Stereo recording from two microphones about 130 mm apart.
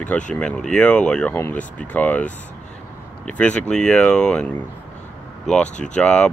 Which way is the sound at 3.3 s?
10° left (ahead or behind).